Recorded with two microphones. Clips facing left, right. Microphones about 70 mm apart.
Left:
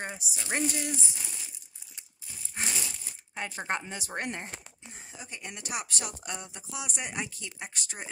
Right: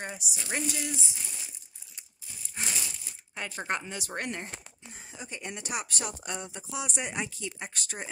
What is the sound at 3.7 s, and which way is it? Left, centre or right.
Speech, left.